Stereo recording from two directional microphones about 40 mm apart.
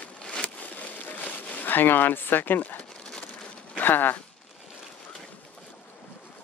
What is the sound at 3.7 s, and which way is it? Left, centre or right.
Speech, left.